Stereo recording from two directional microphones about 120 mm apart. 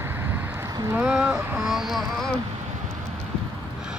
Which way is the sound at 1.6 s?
5° right (ahead or behind).